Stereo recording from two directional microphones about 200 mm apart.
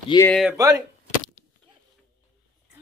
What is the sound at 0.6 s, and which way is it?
Speech, 15° right (ahead or behind).